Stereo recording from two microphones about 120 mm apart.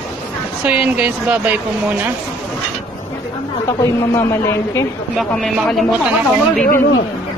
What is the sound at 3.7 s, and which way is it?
A woman's voice, 25° left (ahead or behind).